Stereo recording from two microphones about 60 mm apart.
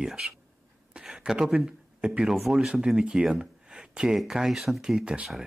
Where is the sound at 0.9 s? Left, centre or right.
Centre.